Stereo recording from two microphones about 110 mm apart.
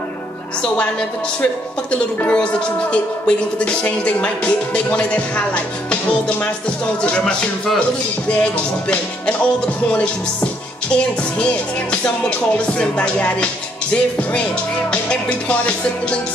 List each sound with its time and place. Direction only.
1.4 s speech: 15° left (ahead or behind)
11.9 s speech: 10° left (ahead or behind)
14.9 s speech: 10° left (ahead or behind)